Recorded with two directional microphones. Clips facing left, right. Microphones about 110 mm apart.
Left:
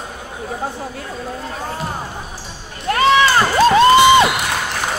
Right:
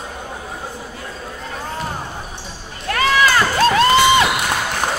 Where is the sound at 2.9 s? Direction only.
25° left (ahead or behind).